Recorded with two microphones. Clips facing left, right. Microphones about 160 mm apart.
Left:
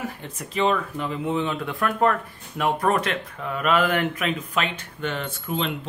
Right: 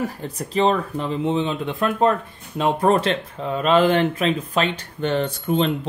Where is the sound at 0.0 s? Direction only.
35° right (ahead or behind).